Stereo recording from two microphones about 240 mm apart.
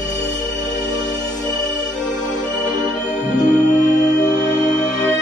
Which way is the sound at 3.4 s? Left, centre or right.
Left.